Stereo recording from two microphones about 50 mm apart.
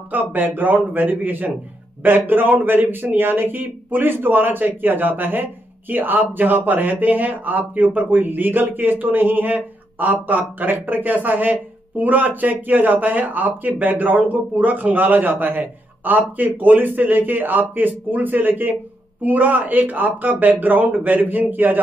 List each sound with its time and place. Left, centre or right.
0.1 s a man's voice: right